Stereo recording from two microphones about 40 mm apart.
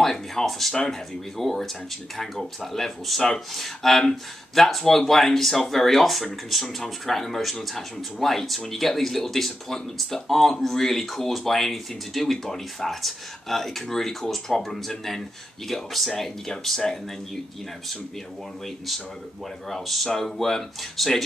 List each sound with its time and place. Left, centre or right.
0.0 s speech: centre
19.7 s speech: centre